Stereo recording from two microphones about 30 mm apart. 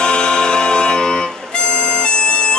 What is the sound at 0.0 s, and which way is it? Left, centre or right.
Music, left.